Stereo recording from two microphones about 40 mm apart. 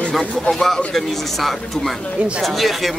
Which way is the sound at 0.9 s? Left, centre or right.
Centre.